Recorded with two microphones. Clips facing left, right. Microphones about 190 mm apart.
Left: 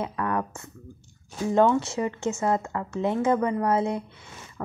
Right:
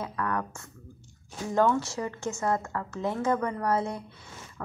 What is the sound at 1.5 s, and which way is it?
A woman's voice, 20° left (ahead or behind).